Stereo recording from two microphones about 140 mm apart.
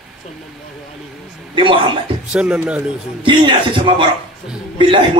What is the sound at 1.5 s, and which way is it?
Speech, 35° right (ahead or behind).